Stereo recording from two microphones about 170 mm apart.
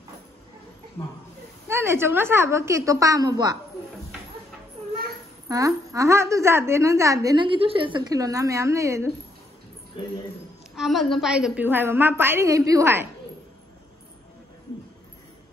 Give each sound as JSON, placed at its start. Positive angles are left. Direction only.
{"t": 1.7, "sound": "a woman's voice", "side_deg": -15}
{"t": 5.5, "sound": "a woman's voice", "side_deg": -20}
{"t": 10.8, "sound": "a woman's voice", "side_deg": 0}